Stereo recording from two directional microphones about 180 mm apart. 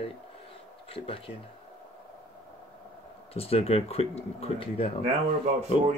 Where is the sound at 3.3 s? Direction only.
35° left (ahead or behind).